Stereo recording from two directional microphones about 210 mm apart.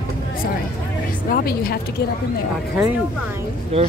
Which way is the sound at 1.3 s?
45° left (ahead or behind).